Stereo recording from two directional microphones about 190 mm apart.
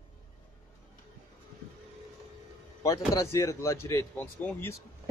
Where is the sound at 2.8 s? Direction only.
15° left (ahead or behind).